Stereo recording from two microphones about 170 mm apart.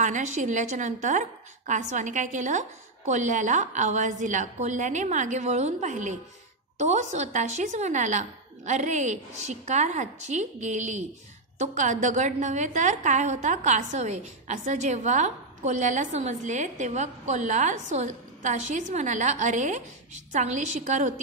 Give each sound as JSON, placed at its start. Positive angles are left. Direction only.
{"t": 0.0, "sound": "a woman's voice", "side_deg": -45}